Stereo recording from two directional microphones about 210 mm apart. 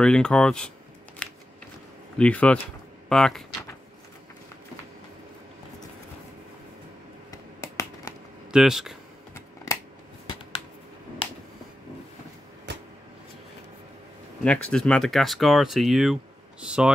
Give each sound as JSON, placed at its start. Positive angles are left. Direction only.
{"t": 0.0, "sound": "speech", "side_deg": 5}
{"t": 1.2, "sound": "scissors", "side_deg": 5}
{"t": 2.1, "sound": "speech", "side_deg": 5}
{"t": 7.2, "sound": "finger snapping", "side_deg": 15}
{"t": 8.5, "sound": "speech", "side_deg": 0}
{"t": 9.7, "sound": "scissors", "side_deg": 15}
{"t": 14.4, "sound": "speech", "side_deg": 5}